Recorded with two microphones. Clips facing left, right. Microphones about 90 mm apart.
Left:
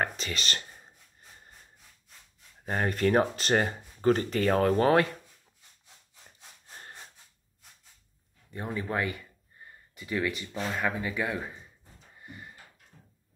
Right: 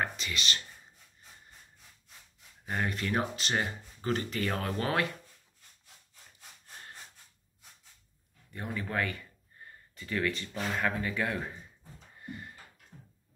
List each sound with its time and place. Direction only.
0.0 s speech: 40° left (ahead or behind)
2.6 s speech: 40° left (ahead or behind)
8.5 s speech: 25° left (ahead or behind); by 11.5 s 10° left (ahead or behind)
12.2 s a sound: 5° left (ahead or behind)